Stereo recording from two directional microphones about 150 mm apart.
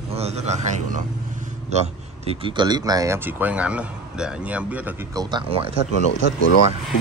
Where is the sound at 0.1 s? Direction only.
45° right (ahead or behind); by 4.9 s 10° right (ahead or behind).